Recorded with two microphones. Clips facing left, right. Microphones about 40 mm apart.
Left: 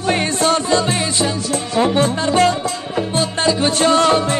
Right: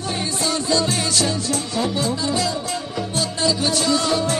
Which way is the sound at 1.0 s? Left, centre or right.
Left.